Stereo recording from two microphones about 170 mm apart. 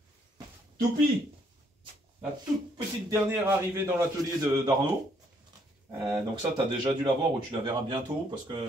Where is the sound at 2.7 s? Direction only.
15° right (ahead or behind).